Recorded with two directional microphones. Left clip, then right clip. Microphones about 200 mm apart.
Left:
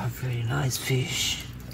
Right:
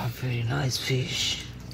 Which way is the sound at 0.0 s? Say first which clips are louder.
Right 1 dB; 10° right (ahead or behind).